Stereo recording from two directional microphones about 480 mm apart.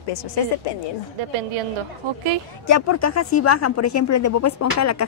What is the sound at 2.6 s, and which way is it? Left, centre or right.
Speech, left.